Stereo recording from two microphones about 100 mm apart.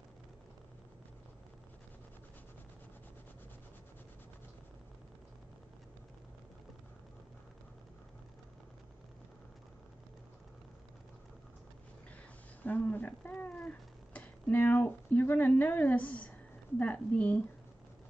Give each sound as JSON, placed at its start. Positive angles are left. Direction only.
{"t": 12.6, "sound": "speech", "side_deg": 15}